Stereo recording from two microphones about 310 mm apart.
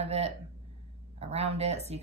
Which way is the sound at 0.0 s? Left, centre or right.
Centre.